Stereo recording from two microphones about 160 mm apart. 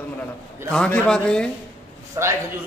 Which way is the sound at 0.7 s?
5° left (ahead or behind).